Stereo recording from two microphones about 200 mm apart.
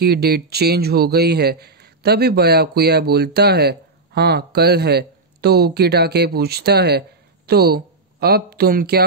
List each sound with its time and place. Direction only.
0.0 s speech: 55° right (ahead or behind)